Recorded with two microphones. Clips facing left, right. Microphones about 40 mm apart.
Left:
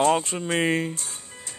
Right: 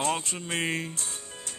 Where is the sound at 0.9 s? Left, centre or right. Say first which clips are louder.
Left 2 dB; right.